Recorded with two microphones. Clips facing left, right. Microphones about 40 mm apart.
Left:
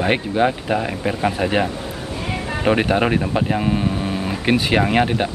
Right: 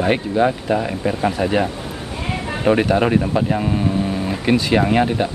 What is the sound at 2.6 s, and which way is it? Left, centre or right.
Speech, centre.